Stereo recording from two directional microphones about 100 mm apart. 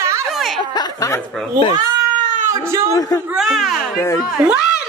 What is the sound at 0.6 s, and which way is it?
Speech, 45° left (ahead or behind).